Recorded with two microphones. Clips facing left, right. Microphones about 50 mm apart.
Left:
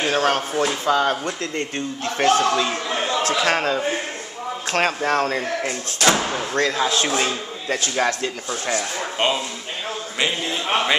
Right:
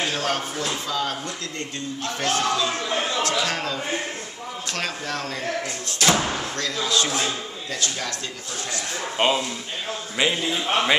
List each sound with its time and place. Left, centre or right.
0.0 s speech: left
3.2 s a sound: left
3.4 s speech: left
6.1 s speech: centre
6.5 s a man's voice: left
9.2 s a man's voice: centre